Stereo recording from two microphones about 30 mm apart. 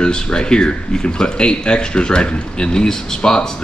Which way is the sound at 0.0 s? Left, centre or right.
Left.